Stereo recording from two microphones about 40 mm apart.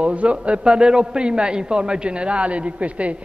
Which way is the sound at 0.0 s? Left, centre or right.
Right.